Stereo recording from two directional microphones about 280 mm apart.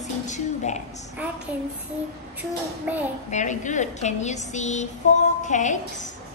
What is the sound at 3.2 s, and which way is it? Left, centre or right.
A woman's voice, left.